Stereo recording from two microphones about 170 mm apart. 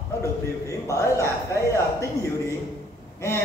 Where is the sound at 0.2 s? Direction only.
15° left (ahead or behind).